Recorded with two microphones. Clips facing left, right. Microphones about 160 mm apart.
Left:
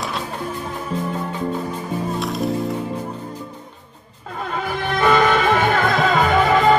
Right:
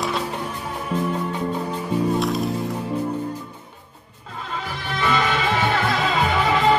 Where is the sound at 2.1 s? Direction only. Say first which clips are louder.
Right 1 dB; centre (ahead or behind).